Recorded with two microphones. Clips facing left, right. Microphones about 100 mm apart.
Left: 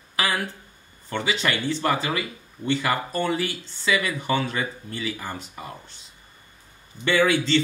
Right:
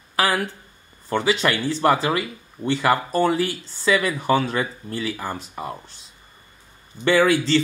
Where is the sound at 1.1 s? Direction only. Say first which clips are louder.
Right 5 dB; 40° right (ahead or behind).